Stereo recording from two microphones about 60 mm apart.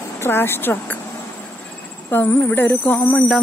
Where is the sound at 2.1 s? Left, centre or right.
Left.